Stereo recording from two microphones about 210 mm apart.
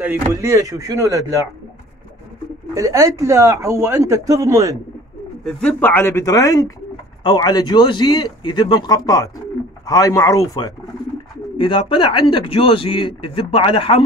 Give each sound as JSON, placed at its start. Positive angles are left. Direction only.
{"t": 0.0, "sound": "speech", "side_deg": -10}
{"t": 2.7, "sound": "speech", "side_deg": -15}
{"t": 5.4, "sound": "speech", "side_deg": 5}